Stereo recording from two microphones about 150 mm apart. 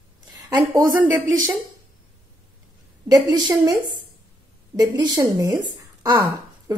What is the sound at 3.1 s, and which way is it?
Speech, 25° right (ahead or behind).